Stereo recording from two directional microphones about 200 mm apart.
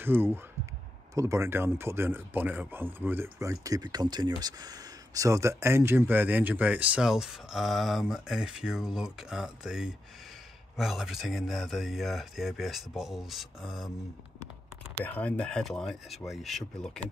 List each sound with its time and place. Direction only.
0.0 s speech: 10° right (ahead or behind)
15.0 s speech: 5° left (ahead or behind)